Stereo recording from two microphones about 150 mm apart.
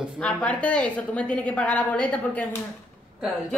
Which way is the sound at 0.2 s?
10° left (ahead or behind).